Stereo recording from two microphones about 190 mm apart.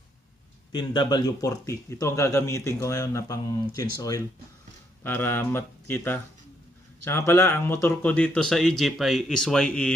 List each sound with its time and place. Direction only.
0.7 s speech: 25° left (ahead or behind)
5.0 s speech: 10° left (ahead or behind)